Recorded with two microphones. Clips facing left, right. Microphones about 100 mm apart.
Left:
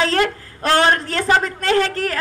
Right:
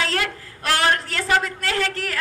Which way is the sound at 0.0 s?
35° left (ahead or behind).